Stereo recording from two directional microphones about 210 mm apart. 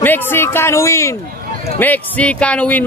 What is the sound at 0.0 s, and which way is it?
Speech, 10° left (ahead or behind).